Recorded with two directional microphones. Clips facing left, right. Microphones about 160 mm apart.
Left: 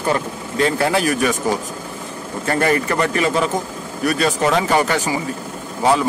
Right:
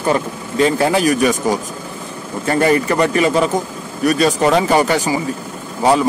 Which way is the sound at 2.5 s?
15° right (ahead or behind).